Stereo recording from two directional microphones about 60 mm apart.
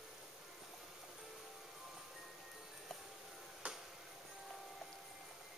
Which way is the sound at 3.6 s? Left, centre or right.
Centre.